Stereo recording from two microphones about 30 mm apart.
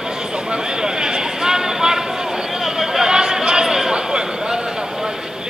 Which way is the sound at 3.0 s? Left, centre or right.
Right.